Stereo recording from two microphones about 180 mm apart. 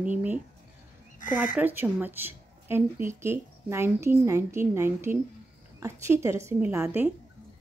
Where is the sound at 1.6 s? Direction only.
10° right (ahead or behind).